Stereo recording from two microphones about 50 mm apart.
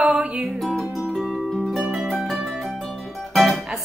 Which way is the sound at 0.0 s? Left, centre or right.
Right.